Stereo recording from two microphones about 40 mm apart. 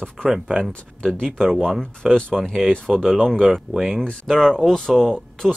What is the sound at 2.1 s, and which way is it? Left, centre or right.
Speech, centre.